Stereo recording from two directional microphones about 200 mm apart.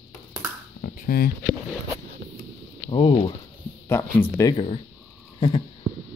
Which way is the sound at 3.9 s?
10° left (ahead or behind).